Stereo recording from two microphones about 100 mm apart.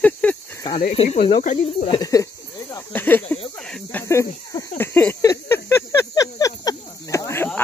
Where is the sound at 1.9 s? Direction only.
35° left (ahead or behind).